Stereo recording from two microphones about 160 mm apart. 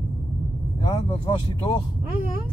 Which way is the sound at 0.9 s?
30° left (ahead or behind).